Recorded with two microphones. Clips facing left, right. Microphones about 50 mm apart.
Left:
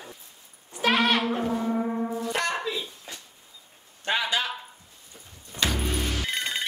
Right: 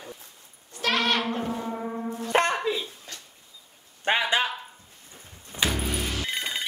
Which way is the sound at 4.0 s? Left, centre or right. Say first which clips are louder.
Right 3 dB; right.